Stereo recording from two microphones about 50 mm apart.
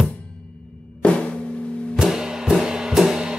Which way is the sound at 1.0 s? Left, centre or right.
Left.